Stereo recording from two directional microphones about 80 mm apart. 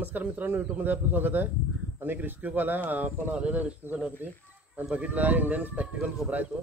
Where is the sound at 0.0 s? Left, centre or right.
Right.